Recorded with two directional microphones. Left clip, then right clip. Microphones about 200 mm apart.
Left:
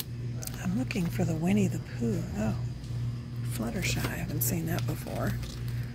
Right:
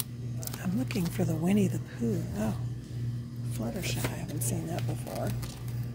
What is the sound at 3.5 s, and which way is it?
Speech, 15° left (ahead or behind).